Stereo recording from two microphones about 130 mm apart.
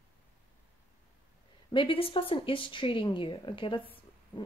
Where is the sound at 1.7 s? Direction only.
40° left (ahead or behind).